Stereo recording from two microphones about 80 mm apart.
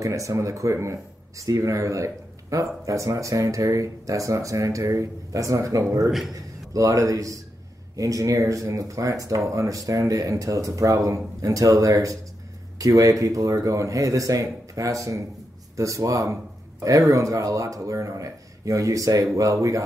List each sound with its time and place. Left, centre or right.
0.0 s speech: right